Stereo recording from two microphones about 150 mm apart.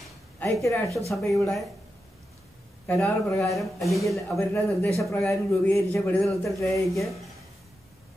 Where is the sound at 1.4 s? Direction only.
Centre (ahead or behind).